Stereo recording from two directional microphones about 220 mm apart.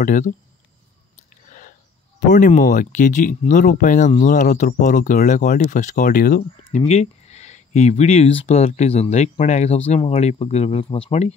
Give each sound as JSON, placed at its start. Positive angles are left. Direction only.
{"t": 0.0, "sound": "speech", "side_deg": 35}
{"t": 2.1, "sound": "speech", "side_deg": 35}
{"t": 6.9, "sound": "speech", "side_deg": 30}